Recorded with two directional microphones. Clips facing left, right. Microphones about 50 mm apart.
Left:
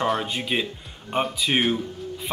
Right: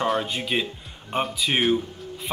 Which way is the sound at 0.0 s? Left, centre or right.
Centre.